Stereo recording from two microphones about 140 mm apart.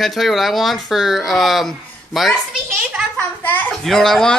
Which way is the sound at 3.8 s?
Centre (ahead or behind).